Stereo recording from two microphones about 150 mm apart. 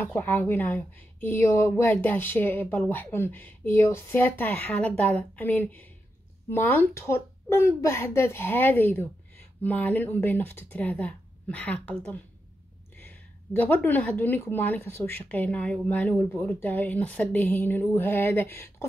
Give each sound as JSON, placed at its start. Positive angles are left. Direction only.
{"t": 0.0, "sound": "speech", "side_deg": 15}